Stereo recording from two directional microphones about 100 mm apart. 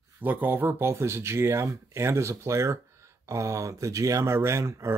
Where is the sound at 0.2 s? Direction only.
20° right (ahead or behind).